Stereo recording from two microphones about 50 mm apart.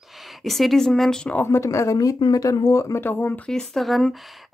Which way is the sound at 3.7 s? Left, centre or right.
Centre.